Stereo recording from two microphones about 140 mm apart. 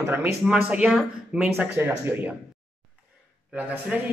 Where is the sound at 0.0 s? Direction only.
15° right (ahead or behind).